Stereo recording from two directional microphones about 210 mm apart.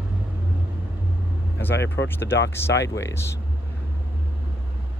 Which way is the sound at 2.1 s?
10° left (ahead or behind).